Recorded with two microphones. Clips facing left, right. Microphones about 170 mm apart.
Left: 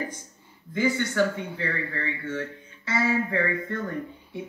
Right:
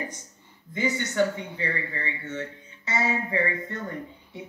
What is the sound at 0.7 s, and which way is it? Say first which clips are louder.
A man's voice: left 1 dB; 20° right (ahead or behind).